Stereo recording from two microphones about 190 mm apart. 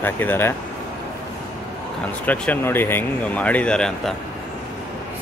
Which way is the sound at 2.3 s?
10° left (ahead or behind).